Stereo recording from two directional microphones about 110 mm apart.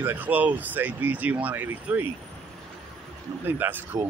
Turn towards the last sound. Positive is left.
turn(degrees=-20)  # may be behind; listen again after turning